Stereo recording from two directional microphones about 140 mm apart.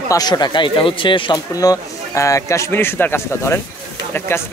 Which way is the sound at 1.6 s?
25° left (ahead or behind).